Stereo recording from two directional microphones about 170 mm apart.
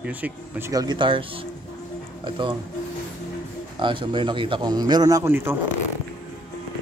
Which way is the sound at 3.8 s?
30° right (ahead or behind).